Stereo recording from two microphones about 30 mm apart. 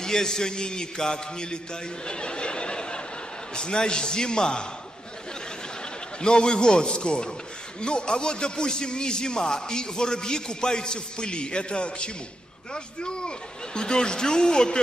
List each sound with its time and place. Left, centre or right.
0.0 s a man's voice: centre
2.0 s a sound: left
3.5 s a man's voice: left
6.2 s a man's voice: left